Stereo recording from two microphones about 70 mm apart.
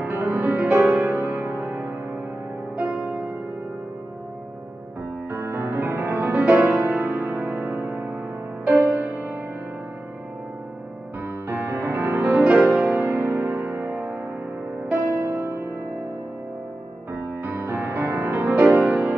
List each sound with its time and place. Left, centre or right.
0.0 s music: right
5.3 s music: right
11.4 s music: right
12.2 s music: centre
13.0 s music: right
17.1 s music: right